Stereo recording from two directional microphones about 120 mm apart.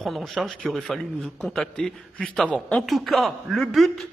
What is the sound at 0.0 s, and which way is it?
A man's voice, centre (ahead or behind).